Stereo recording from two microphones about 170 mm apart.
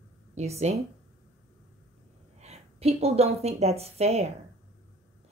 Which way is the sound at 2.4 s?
40° right (ahead or behind).